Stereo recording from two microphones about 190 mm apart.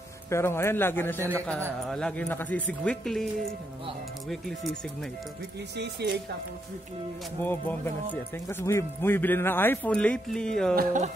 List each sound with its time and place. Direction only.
0.3 s speech: 15° left (ahead or behind)
5.8 s speech: 60° right (ahead or behind)
7.4 s speech: 10° left (ahead or behind)
10.8 s speech: 45° right (ahead or behind)